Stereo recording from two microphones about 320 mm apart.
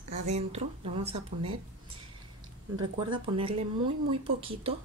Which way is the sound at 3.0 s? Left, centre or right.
Centre.